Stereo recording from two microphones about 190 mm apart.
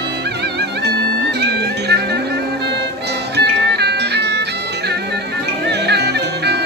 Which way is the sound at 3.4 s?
60° right (ahead or behind).